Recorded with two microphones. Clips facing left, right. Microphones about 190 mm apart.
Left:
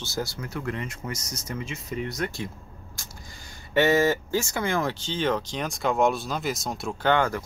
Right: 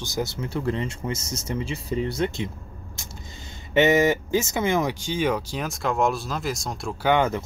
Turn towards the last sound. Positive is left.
turn(degrees=-20)  # may be behind; listen again after turning